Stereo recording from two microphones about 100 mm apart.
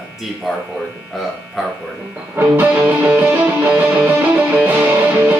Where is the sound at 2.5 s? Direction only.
15° right (ahead or behind).